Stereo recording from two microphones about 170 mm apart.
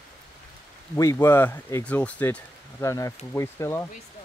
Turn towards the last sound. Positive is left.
turn(degrees=15)  # may be behind; listen again after turning